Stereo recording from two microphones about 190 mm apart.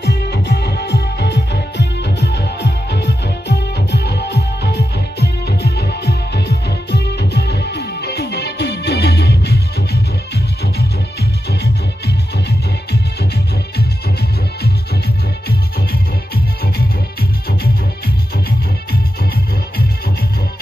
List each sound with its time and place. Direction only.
0.0 s music: 60° left (ahead or behind)